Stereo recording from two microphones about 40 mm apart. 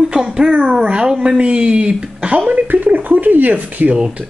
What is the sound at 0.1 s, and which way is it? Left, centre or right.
A child's voice, centre.